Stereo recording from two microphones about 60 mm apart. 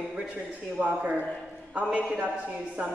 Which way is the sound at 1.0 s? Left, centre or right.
Right.